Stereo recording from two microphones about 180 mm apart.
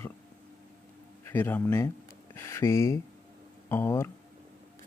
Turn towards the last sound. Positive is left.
turn(degrees=15)  # may be behind; listen again after turning